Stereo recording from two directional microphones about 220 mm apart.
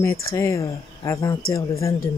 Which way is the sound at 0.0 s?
15° left (ahead or behind).